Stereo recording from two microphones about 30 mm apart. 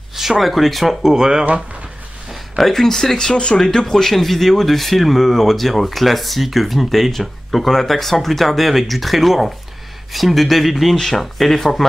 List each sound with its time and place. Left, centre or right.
0.1 s a sound: centre
0.4 s a man's voice: centre
1.0 s speech: right
2.5 s a man's voice: centre